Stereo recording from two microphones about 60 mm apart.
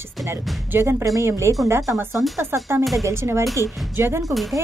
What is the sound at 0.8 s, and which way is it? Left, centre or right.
Speech, right.